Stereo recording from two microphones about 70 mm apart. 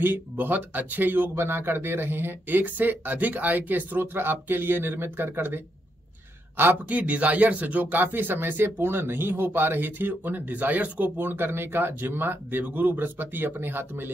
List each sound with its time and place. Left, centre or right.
0.0 s a man's voice: right